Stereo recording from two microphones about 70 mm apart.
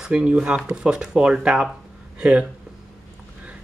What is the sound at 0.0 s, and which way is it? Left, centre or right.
Speech, centre.